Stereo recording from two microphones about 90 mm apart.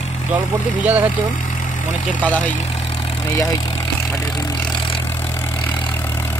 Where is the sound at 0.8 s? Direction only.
20° right (ahead or behind).